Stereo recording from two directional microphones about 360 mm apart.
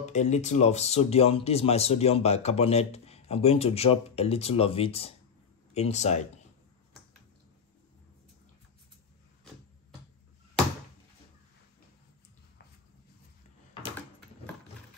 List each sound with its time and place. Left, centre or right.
0.0 s speech: centre